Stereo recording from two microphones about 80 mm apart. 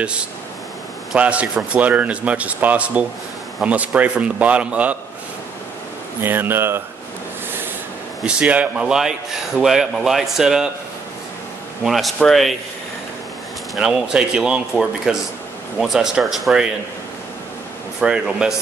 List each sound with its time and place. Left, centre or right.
0.0 s speech: centre
6.2 s speech: right
8.2 s a man's voice: centre
11.8 s a man's voice: centre
13.7 s a man's voice: centre
18.0 s speech: centre